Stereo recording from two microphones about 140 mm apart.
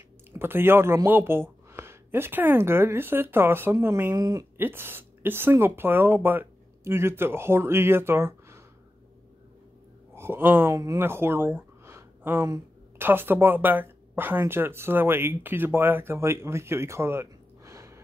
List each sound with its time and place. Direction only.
0.3 s speech: 15° right (ahead or behind)
10.1 s speech: 15° right (ahead or behind)